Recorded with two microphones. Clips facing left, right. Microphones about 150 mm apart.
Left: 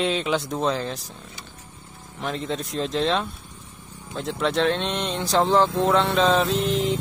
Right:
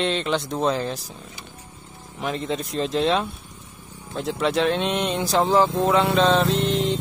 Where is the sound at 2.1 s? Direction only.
5° right (ahead or behind).